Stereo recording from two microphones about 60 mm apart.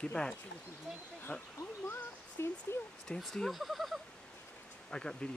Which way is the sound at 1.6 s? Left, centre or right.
Left.